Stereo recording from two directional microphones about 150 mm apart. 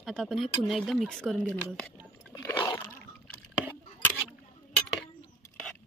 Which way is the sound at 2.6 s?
30° left (ahead or behind).